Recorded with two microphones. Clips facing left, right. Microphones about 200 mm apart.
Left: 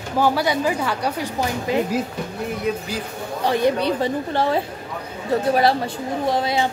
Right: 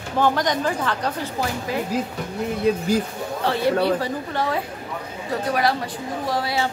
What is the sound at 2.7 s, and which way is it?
Speech, 35° right (ahead or behind).